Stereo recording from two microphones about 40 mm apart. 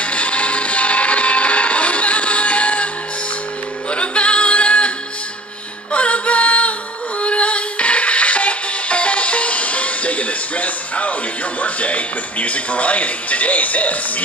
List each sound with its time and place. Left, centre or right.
0.0 s music: left
3.9 s music: left
11.6 s speech: left